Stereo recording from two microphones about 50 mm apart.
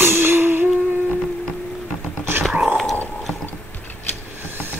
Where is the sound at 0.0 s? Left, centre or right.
Right.